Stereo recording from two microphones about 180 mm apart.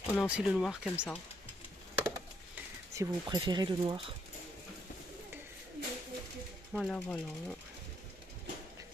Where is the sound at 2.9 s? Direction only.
20° right (ahead or behind).